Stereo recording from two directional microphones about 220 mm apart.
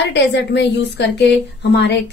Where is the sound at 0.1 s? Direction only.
50° left (ahead or behind).